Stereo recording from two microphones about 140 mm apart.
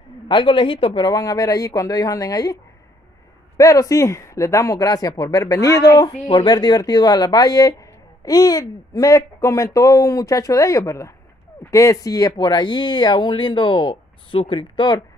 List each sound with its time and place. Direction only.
0.3 s speech: 35° left (ahead or behind)